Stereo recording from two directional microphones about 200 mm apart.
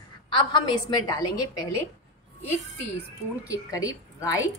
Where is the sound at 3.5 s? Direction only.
15° left (ahead or behind).